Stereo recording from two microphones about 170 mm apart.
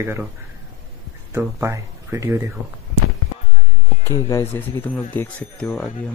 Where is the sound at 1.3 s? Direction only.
15° right (ahead or behind).